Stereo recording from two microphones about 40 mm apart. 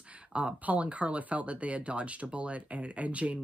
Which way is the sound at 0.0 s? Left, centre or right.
Right.